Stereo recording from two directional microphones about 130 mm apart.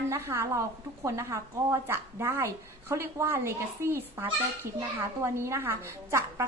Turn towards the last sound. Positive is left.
turn(degrees=-20)  # may be behind; listen again after turning